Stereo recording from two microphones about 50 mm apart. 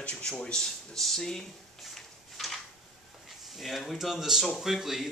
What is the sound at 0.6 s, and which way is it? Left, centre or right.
Speech, centre.